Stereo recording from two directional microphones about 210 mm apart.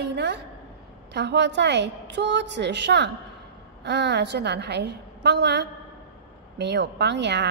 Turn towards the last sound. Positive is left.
turn(degrees=-55)  # may be behind; listen again after turning